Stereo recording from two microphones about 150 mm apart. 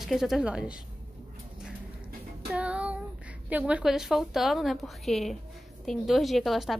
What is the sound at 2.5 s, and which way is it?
Child singing, 10° right (ahead or behind).